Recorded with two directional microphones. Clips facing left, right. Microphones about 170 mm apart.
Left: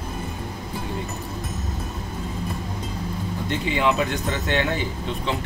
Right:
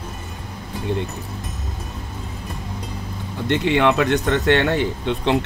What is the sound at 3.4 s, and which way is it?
Speech, 75° right (ahead or behind).